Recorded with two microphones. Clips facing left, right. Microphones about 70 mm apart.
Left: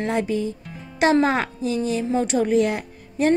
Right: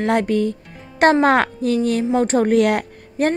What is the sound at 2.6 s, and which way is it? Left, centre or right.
Speech, right.